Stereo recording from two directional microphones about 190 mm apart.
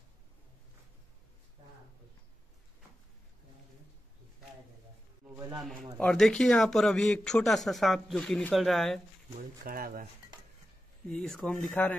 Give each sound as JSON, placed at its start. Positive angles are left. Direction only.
{"t": 5.9, "sound": "speech", "side_deg": 5}
{"t": 9.7, "sound": "speech", "side_deg": -50}
{"t": 11.1, "sound": "speech", "side_deg": 5}